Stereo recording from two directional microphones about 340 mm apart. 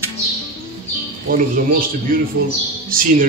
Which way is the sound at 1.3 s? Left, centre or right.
Right.